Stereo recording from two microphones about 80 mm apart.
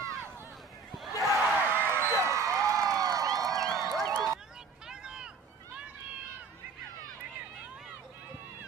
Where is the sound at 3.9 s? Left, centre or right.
Centre.